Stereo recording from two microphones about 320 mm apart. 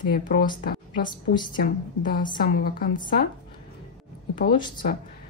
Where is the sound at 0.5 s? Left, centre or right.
Left.